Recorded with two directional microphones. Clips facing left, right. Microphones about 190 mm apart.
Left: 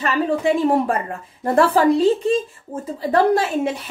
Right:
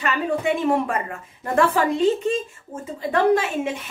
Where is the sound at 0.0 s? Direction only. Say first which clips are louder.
Left 4 dB; 35° left (ahead or behind).